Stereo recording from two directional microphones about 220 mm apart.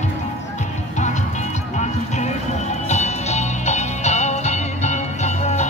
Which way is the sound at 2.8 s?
30° left (ahead or behind).